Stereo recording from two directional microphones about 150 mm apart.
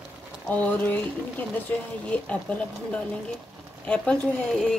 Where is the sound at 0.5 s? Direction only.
10° left (ahead or behind).